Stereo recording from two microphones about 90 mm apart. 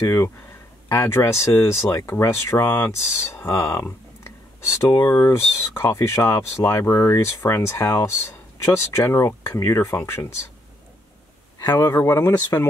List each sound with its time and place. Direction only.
0.0 s speech: 35° left (ahead or behind)
11.6 s speech: 50° left (ahead or behind)
11.9 s speech: 25° left (ahead or behind)